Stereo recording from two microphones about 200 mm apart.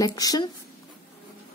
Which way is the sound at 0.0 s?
20° left (ahead or behind).